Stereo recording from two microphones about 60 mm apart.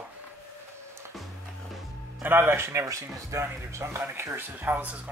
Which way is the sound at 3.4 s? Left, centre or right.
Right.